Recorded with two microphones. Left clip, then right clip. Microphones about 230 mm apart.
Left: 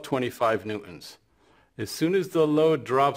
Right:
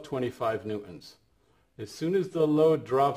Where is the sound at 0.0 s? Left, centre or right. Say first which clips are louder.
Left 5 dB; left.